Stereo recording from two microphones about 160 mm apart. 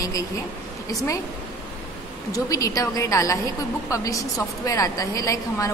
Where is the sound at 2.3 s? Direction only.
20° left (ahead or behind).